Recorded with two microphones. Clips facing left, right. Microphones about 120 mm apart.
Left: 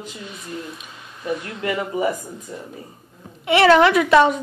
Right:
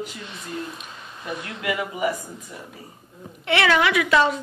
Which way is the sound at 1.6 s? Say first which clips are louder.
Left 2 dB; 35° left (ahead or behind).